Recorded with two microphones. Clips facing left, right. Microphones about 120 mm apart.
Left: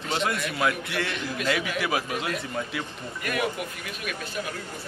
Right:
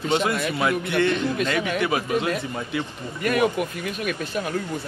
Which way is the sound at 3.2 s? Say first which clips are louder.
Right 7 dB; 35° right (ahead or behind).